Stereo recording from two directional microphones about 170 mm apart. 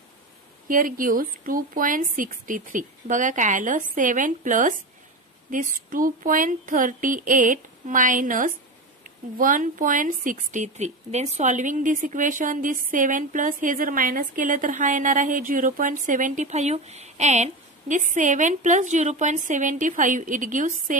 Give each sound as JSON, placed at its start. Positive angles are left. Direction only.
{"t": 0.7, "sound": "speech", "side_deg": -55}